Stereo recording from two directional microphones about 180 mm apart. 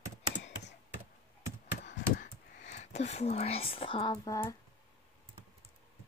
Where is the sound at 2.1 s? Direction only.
45° left (ahead or behind); by 4.3 s 30° left (ahead or behind).